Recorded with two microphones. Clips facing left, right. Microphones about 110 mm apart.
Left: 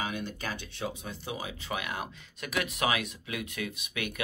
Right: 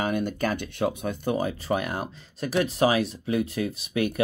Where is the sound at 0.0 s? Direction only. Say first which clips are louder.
Right 9 dB; 50° right (ahead or behind).